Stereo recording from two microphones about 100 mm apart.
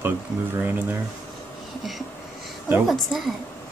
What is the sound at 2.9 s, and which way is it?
Speech, centre (ahead or behind).